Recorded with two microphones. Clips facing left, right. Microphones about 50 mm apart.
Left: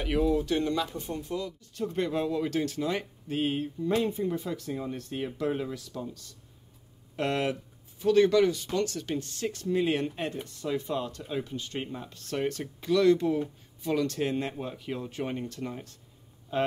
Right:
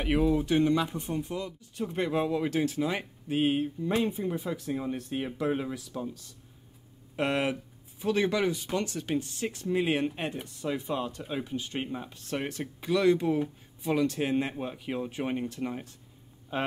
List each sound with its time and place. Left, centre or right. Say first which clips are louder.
0.0 s speech: right 1 dB; centre